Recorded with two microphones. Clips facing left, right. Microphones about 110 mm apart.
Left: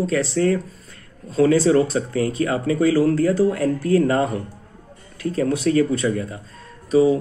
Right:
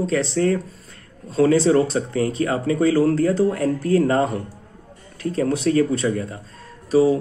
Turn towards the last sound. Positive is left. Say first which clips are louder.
# even
turn(degrees=-35)  # may be behind; listen again after turning